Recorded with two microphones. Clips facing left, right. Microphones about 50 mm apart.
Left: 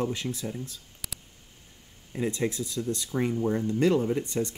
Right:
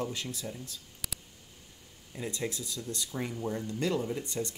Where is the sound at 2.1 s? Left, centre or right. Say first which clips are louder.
Left 7 dB; left.